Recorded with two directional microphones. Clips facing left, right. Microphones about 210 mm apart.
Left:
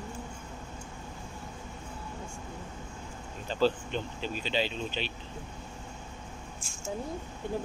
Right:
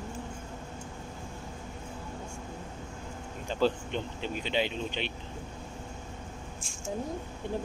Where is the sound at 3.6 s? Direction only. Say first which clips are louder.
Left 1 dB; 20° right (ahead or behind).